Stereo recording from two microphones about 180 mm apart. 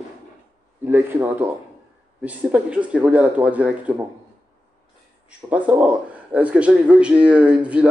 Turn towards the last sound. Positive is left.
turn(degrees=-5)  # may be behind; listen again after turning